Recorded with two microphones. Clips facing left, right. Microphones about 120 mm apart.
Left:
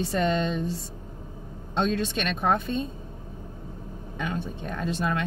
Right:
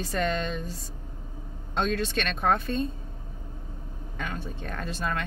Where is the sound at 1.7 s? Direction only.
25° left (ahead or behind).